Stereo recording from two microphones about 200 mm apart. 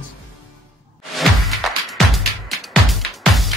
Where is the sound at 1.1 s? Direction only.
Centre (ahead or behind).